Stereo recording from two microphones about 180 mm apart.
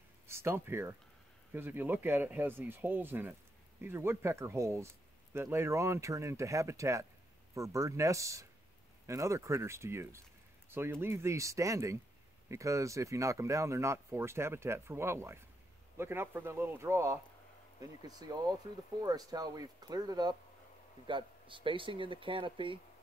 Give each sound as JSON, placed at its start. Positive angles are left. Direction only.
{"t": 0.3, "sound": "speech", "side_deg": -15}